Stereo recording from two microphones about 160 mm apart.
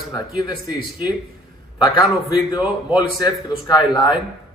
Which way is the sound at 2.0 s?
25° left (ahead or behind).